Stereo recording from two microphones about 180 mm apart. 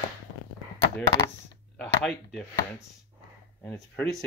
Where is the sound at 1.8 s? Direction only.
5° left (ahead or behind).